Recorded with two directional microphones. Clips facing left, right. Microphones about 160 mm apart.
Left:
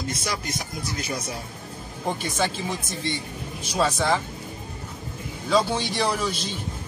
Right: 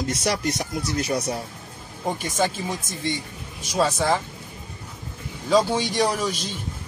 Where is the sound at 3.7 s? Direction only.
10° right (ahead or behind).